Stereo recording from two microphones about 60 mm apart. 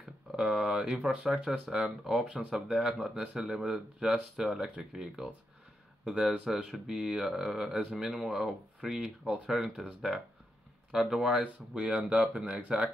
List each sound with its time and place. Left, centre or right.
0.4 s speech: centre
9.5 s speech: centre
10.9 s speech: centre